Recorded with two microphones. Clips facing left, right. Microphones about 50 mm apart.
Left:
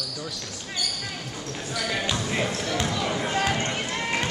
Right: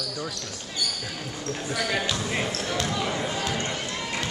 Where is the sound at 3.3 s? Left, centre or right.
Left.